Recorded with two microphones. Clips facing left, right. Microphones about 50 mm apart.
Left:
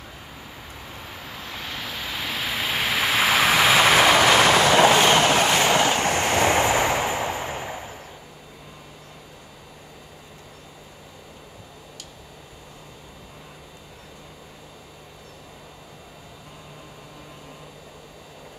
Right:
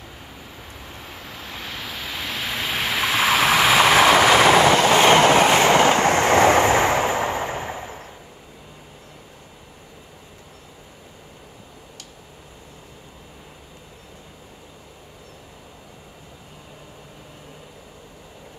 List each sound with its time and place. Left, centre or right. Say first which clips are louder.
1.0 s vehicle: even; centre
5.0 s train: right 4 dB; right